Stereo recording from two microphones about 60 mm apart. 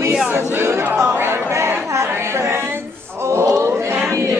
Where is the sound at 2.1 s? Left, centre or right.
Right.